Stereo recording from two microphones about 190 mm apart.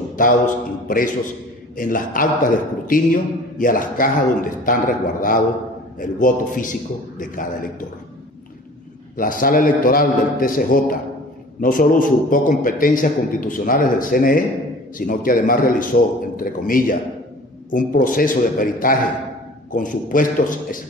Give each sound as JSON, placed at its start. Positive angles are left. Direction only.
{"t": 0.2, "sound": "a man's voice", "side_deg": 45}
{"t": 9.1, "sound": "a man's voice", "side_deg": 45}